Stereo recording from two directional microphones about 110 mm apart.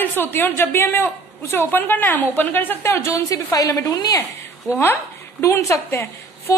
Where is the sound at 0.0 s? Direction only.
20° left (ahead or behind).